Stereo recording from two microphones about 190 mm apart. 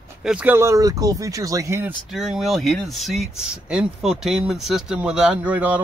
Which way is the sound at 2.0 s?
Centre (ahead or behind).